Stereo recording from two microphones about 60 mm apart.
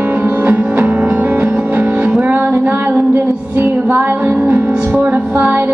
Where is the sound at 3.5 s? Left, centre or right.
Right.